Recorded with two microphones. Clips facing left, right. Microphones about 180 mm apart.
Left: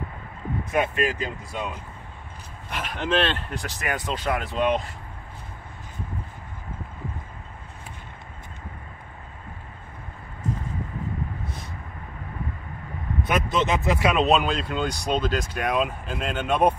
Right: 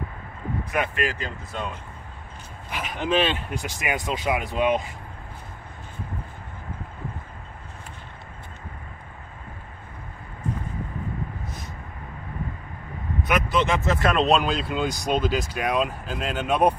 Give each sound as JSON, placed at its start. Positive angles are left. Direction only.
{"t": 0.7, "sound": "speech", "side_deg": 25}
{"t": 1.5, "sound": "speech", "side_deg": 10}
{"t": 13.3, "sound": "speech", "side_deg": 20}